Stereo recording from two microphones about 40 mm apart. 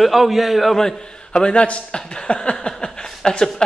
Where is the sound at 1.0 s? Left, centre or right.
Left.